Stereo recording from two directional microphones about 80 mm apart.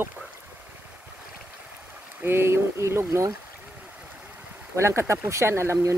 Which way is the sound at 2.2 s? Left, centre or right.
Right.